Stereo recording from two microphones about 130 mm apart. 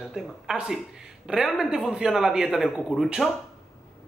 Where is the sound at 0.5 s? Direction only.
5° right (ahead or behind).